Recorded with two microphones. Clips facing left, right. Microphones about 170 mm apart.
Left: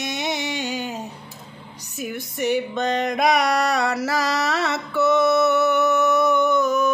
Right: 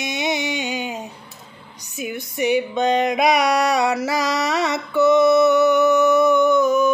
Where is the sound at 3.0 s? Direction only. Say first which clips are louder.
Right 2 dB; 5° right (ahead or behind).